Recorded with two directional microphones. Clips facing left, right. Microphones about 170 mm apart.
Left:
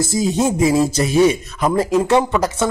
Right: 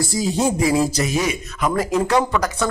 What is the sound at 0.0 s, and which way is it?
Speech, 20° left (ahead or behind).